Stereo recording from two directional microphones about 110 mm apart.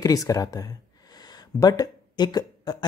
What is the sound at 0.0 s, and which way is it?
Speech, 30° left (ahead or behind).